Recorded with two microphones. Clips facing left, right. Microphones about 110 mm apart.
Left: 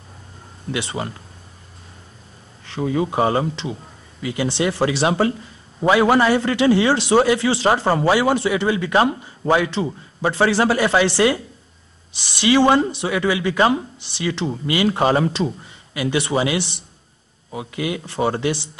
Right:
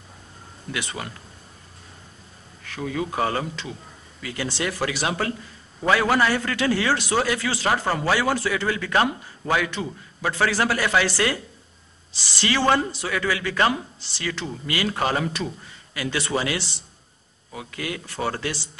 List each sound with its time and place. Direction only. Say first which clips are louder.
0.7 s a man's voice: left 6 dB; 25° left (ahead or behind)
2.6 s a man's voice: left 7 dB; 25° left (ahead or behind)